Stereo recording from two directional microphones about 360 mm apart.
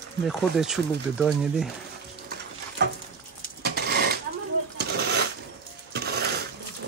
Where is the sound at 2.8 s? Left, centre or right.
Right.